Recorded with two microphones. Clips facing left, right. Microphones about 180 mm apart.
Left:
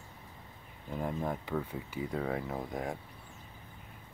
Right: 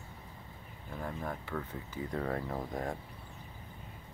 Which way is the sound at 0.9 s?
15° left (ahead or behind).